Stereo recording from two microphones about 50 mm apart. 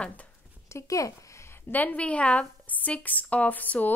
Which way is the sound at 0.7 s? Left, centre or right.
Left.